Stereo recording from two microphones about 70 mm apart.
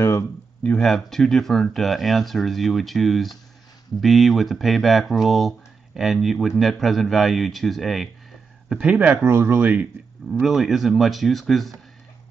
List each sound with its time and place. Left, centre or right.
0.7 s speech: centre
8.8 s speech: right
9.3 s speech: right
9.6 s speech: right
10.4 s speech: centre